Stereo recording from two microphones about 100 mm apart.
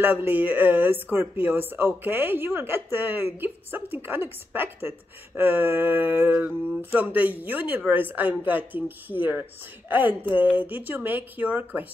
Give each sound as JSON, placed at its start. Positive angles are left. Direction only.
{"t": 0.0, "sound": "speech", "side_deg": -20}